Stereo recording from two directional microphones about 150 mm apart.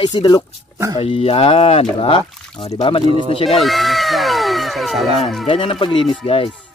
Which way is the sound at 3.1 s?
40° right (ahead or behind).